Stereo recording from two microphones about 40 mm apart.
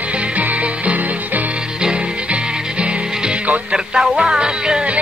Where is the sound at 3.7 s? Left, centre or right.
Centre.